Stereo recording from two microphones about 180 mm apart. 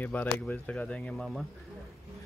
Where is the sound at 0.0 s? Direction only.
10° left (ahead or behind).